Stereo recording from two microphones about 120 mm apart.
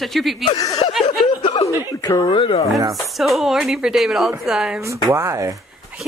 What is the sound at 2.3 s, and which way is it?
Speech, 40° left (ahead or behind).